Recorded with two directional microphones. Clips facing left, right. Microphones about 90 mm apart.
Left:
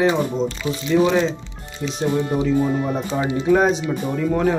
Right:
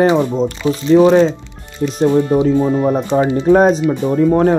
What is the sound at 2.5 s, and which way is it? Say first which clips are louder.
Speech: right 6 dB; 15° right (ahead or behind).